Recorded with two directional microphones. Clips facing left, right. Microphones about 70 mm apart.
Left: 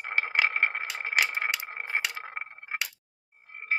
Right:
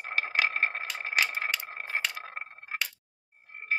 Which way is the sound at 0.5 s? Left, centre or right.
Centre.